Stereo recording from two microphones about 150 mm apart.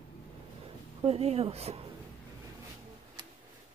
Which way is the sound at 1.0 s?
45° right (ahead or behind).